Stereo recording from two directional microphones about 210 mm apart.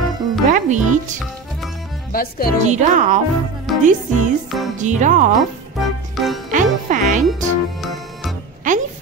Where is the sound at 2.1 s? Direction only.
45° left (ahead or behind).